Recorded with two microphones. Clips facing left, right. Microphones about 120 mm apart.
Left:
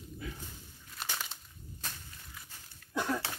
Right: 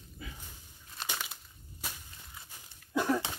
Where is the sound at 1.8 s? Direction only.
10° right (ahead or behind).